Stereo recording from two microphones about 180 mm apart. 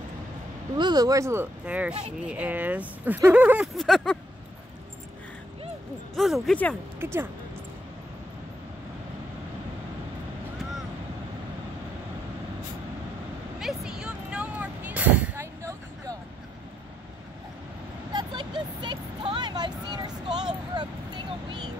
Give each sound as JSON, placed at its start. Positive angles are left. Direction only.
{"t": 0.7, "sound": "speech", "side_deg": -20}
{"t": 6.1, "sound": "speech", "side_deg": 0}
{"t": 7.0, "sound": "speech", "side_deg": -15}
{"t": 13.6, "sound": "vehicle", "side_deg": -5}
{"t": 18.1, "sound": "vehicle", "side_deg": -25}
{"t": 20.7, "sound": "a sound", "side_deg": -25}